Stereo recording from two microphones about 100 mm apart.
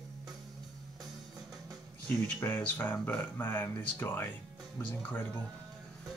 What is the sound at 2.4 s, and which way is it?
Speech, 25° left (ahead or behind).